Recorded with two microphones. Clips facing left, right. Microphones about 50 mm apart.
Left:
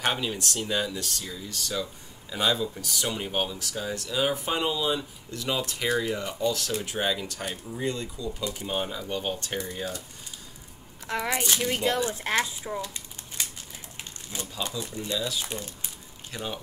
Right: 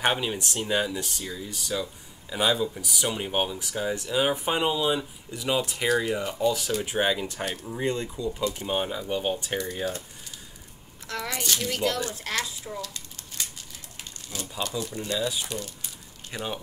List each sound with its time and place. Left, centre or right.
0.0 s speech: centre
8.5 s speech: centre
11.1 s speech: left
14.3 s speech: left
15.1 s speech: right
15.4 s speech: left
16.3 s speech: centre